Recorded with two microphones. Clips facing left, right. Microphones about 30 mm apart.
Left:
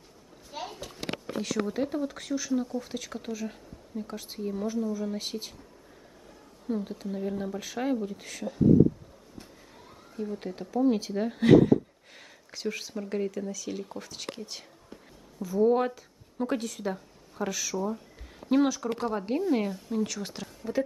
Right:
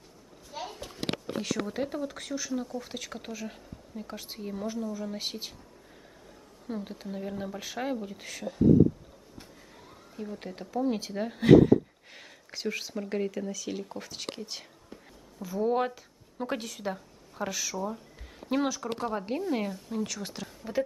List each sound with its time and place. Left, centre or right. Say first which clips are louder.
0.5 s a sound: left 1 dB; centre
1.4 s speech: left 4 dB; centre
5.1 s speech: left 1 dB; centre
6.7 s speech: left 4 dB; centre
20.4 s speech: left 1 dB; centre